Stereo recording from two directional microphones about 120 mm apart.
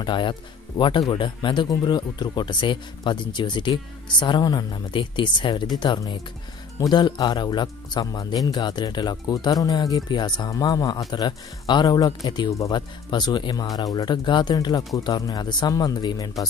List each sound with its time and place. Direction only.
0.0 s speech: 40° left (ahead or behind)